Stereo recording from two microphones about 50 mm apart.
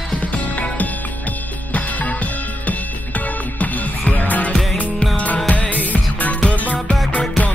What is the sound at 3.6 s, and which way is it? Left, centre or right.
Music, left.